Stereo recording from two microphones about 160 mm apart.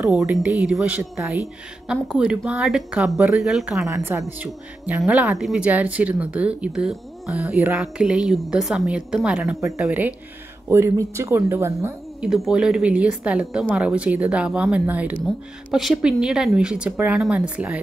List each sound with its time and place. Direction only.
0.1 s speech: centre (ahead or behind)
3.8 s a woman's voice: 15° right (ahead or behind)
12.2 s a woman's voice: 5° right (ahead or behind)